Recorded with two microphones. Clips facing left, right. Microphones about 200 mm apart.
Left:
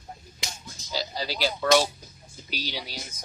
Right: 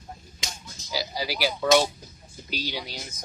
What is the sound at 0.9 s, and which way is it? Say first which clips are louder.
Speech: right 1 dB; 10° right (ahead or behind).